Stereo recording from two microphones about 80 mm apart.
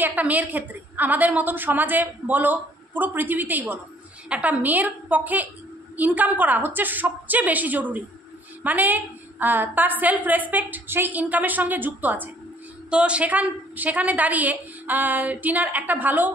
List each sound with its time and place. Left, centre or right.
0.0 s a woman's voice: centre